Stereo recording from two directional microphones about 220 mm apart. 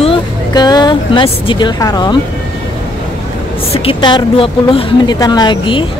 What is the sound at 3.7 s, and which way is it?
Speech, 20° left (ahead or behind).